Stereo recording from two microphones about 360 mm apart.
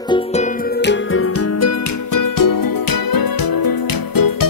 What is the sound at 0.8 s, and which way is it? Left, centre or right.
Music, left.